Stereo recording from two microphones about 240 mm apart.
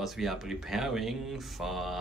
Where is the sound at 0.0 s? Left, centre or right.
Centre.